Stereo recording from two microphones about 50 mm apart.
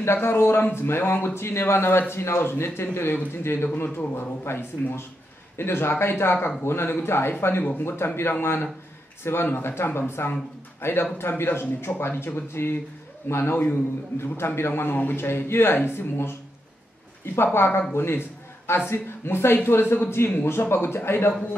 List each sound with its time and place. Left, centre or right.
0.0 s a man's voice: left